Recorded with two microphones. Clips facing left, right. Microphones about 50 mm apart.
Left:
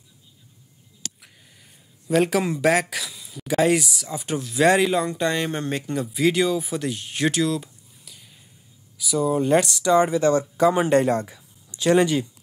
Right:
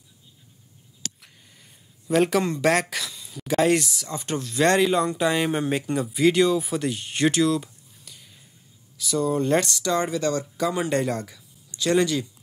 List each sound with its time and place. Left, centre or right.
1.2 s speech: centre